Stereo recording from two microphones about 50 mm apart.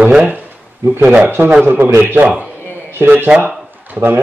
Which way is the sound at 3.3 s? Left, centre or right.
Right.